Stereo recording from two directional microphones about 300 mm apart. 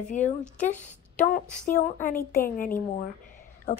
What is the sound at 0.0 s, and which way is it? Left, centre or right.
A woman's voice, left.